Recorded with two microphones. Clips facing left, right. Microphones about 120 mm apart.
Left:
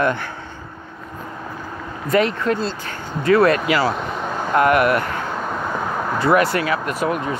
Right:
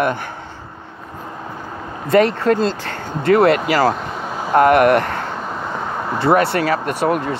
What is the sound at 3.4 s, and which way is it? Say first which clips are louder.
Speech: right 2 dB; 25° right (ahead or behind).